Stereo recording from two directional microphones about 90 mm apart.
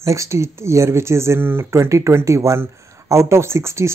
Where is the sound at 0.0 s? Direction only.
35° right (ahead or behind).